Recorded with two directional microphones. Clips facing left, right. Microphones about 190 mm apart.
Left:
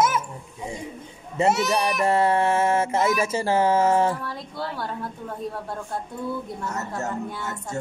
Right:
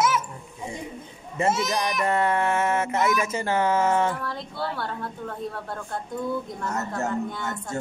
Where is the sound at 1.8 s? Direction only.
30° left (ahead or behind).